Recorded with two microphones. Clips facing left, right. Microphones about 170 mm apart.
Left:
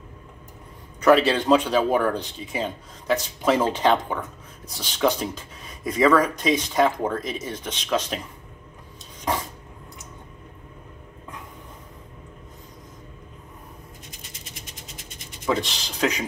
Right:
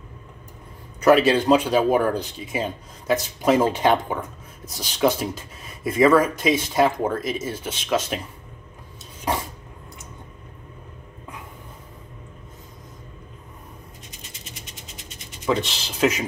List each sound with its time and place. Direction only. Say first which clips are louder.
1.0 s speech: right 2 dB; 10° right (ahead or behind)
15.4 s speech: right 1 dB; centre (ahead or behind)